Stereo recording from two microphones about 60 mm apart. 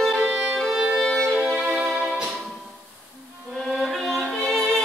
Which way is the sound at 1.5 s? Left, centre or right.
Centre.